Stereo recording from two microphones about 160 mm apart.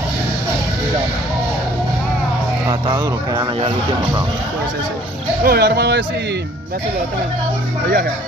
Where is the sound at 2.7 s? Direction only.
25° right (ahead or behind).